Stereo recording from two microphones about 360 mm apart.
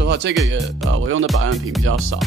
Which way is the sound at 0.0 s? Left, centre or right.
Right.